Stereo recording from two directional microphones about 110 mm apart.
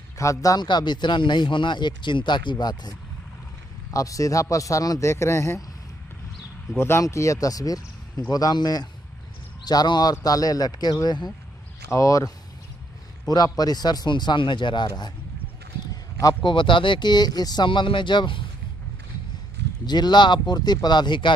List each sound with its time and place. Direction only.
0.2 s a man's voice: 30° left (ahead or behind)
6.8 s speech: 25° left (ahead or behind)
11.9 s a man's voice: 30° left (ahead or behind)
13.3 s speech: 35° left (ahead or behind)
15.9 s a sound: 30° left (ahead or behind)
16.4 s speech: 50° left (ahead or behind)
19.9 s speech: 40° left (ahead or behind)